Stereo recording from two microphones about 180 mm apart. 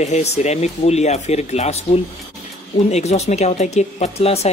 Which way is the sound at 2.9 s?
40° left (ahead or behind).